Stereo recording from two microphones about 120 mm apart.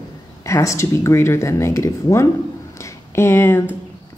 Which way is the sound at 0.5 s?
25° left (ahead or behind).